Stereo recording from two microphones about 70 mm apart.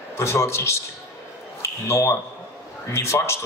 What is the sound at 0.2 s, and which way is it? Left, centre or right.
Speech, left.